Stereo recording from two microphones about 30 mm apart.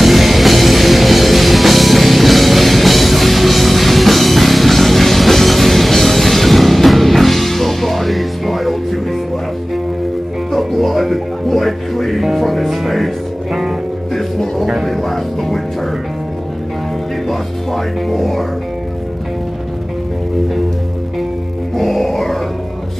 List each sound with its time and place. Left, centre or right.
0.0 s music: centre
10.5 s music: centre
14.9 s music: centre
17.3 s music: centre
21.7 s music: centre